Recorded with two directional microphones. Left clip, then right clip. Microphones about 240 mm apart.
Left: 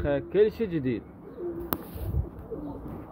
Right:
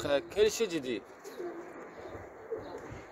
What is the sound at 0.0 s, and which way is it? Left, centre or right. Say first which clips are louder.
Speech: left 4 dB; centre.